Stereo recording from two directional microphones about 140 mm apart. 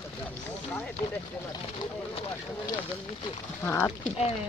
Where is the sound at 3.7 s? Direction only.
15° left (ahead or behind).